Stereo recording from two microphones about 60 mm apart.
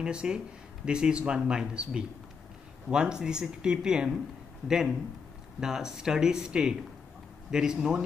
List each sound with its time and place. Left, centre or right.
0.0 s speech: centre